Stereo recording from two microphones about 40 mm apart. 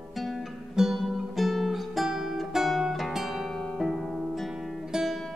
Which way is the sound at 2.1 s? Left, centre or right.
Centre.